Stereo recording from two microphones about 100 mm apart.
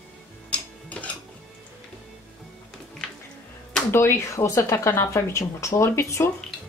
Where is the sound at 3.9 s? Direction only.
25° left (ahead or behind).